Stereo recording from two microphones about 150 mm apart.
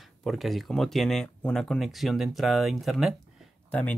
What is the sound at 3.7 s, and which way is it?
Speech, 10° left (ahead or behind).